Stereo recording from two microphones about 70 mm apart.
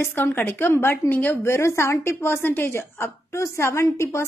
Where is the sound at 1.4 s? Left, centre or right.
Left.